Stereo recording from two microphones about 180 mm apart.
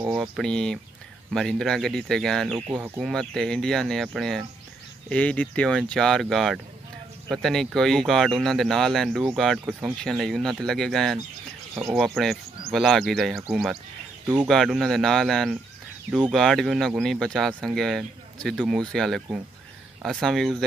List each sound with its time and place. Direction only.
0.1 s speech: centre (ahead or behind)
11.7 s speech: 15° right (ahead or behind)
12.0 s speech: centre (ahead or behind)
14.5 s speech: centre (ahead or behind)